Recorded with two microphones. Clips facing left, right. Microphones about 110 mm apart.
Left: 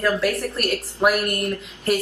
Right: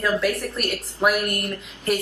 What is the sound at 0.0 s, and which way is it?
Speech, centre (ahead or behind).